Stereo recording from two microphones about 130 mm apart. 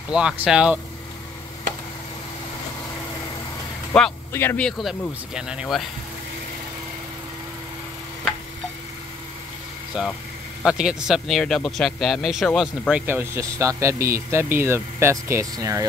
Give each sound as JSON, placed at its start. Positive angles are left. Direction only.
{"t": 0.1, "sound": "speech", "side_deg": -5}
{"t": 3.9, "sound": "speech", "side_deg": 5}
{"t": 4.3, "sound": "speech", "side_deg": 15}
{"t": 4.6, "sound": "speech", "side_deg": 0}
{"t": 9.9, "sound": "speech", "side_deg": -5}
{"t": 12.9, "sound": "speech", "side_deg": -15}